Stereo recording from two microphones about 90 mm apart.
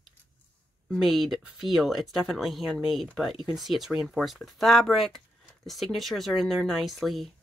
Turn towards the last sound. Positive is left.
turn(degrees=0)  # may be behind; listen again after turning